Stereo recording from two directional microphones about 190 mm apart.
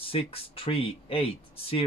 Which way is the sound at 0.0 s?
30° left (ahead or behind).